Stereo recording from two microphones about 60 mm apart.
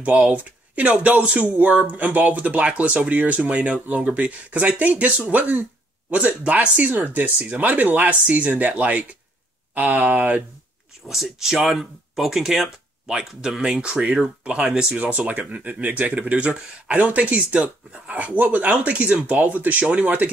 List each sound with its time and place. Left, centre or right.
0.0 s speech: right
11.1 s speech: centre; by 20.2 s right